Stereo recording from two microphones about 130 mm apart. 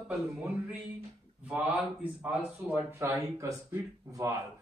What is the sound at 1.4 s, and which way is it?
Speech, 10° right (ahead or behind).